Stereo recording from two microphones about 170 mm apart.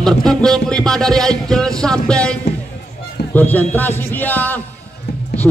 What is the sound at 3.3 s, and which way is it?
Music, 10° left (ahead or behind).